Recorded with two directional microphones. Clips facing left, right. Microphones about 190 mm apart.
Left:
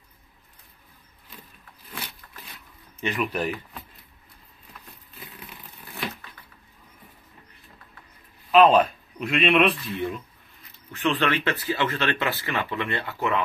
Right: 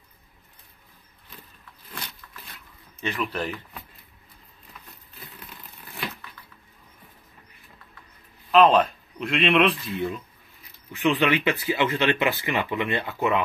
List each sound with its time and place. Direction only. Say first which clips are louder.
3.0 s speech: left 2 dB; 15° left (ahead or behind)
8.5 s speech: left 1 dB; 5° left (ahead or behind)
10.9 s speech: right 2 dB; 10° right (ahead or behind)